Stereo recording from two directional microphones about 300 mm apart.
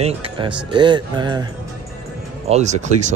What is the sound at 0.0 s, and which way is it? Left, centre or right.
A man's voice, centre.